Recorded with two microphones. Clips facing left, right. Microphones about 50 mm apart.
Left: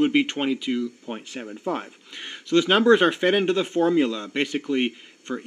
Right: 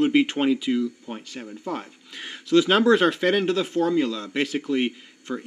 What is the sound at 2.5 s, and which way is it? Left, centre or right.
Speech, centre.